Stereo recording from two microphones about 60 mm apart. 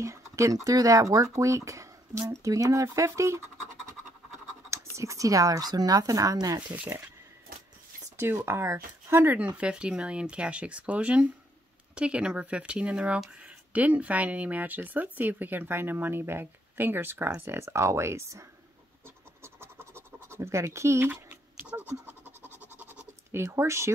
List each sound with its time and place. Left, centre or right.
0.0 s speech: right
4.6 s speech: right
8.2 s speech: right
9.3 s speech: right
17.6 s speech: right
19.0 s writing: right
21.1 s tick-tock: right
21.8 s scratch: right
23.3 s speech: right